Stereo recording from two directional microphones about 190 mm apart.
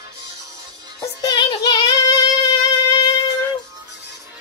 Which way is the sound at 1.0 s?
20° left (ahead or behind).